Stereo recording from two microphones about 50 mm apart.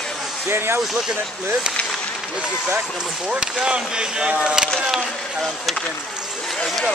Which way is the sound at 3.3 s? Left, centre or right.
Centre.